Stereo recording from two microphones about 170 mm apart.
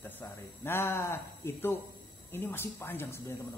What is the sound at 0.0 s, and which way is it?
Speech, 15° left (ahead or behind).